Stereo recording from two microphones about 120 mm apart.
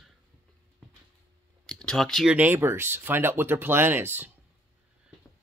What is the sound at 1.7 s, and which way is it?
Speech, 5° left (ahead or behind).